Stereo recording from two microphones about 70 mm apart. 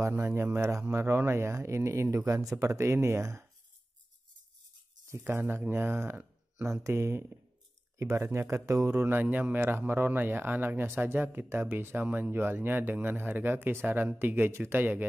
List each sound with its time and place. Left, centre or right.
0.0 s speech: right
5.1 s speech: right
8.3 s speech: right